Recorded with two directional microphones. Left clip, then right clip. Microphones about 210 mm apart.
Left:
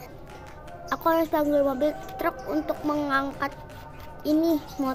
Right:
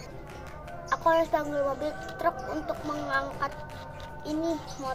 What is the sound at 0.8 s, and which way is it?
A child's voice, 50° left (ahead or behind).